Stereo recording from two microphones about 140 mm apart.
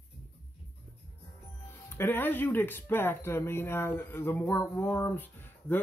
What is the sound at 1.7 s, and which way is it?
Speech, 15° left (ahead or behind).